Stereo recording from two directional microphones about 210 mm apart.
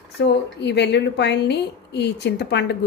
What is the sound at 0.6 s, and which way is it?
A woman's voice, 55° left (ahead or behind).